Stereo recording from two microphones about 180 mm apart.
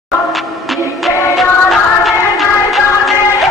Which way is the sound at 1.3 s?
Centre (ahead or behind).